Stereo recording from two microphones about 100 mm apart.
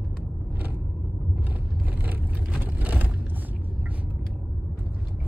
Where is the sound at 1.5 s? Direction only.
20° right (ahead or behind).